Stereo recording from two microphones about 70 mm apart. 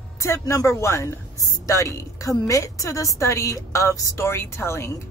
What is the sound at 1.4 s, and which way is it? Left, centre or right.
A woman's voice, left.